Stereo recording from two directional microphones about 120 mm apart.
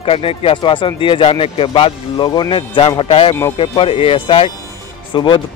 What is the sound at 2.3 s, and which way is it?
A man's voice, 35° left (ahead or behind).